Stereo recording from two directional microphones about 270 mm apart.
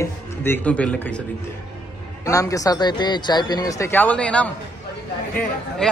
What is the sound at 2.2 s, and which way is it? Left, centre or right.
A man's voice, centre.